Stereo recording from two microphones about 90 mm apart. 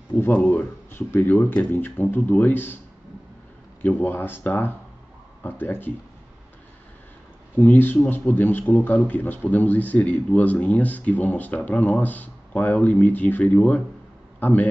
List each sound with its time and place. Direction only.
0.2 s speech: 20° left (ahead or behind)
3.8 s speech: 25° left (ahead or behind)
7.5 s a man's voice: 20° left (ahead or behind)